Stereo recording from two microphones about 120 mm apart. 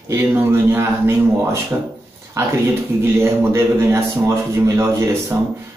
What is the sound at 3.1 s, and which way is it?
Speech, 20° right (ahead or behind).